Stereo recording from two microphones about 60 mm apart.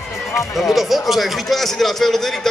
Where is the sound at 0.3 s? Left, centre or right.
Centre.